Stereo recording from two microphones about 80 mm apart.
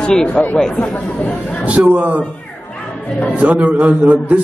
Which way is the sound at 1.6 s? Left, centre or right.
Centre.